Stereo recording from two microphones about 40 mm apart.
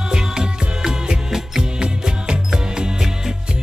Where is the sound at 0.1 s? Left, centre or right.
Centre.